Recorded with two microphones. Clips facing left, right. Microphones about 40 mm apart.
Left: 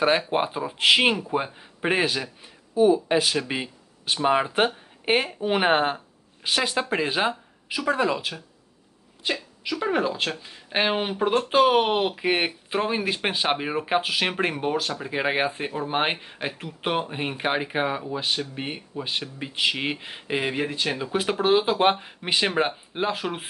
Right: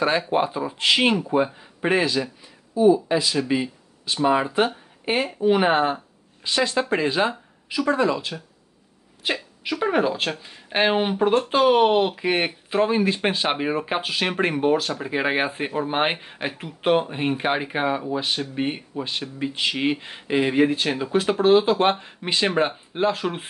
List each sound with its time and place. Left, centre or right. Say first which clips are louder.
0.0 s speech: right 1 dB; centre
1.1 s speech: right 4 dB; centre
1.4 s speech: right 5 dB; centre
2.0 s a man's voice: right 3 dB; left
6.7 s speech: right 3 dB; centre
9.2 s speech: right 2 dB; centre
19.0 s speech: right 2 dB; centre
20.5 s speech: right 6 dB; centre
21.2 s speech: right 4 dB; centre